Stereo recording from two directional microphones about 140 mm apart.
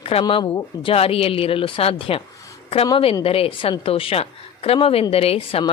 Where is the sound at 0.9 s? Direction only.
45° left (ahead or behind).